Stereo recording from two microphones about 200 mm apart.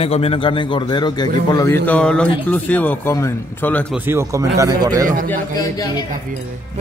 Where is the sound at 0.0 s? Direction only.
30° left (ahead or behind).